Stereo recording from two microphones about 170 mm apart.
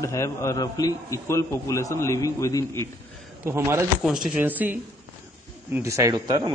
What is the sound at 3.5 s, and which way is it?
Speech, 15° right (ahead or behind).